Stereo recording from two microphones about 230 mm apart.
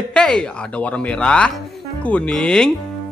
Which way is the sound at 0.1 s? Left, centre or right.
Centre.